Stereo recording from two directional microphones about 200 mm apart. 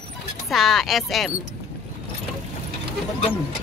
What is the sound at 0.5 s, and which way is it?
Speech, centre (ahead or behind).